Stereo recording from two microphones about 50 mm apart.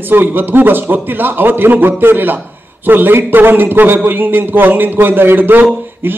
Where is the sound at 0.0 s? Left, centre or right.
Right.